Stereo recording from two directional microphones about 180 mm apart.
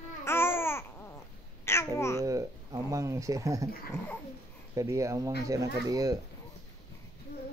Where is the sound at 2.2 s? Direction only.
20° right (ahead or behind).